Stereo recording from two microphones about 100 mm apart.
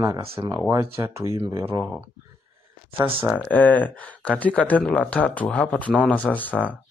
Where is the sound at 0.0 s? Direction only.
35° right (ahead or behind).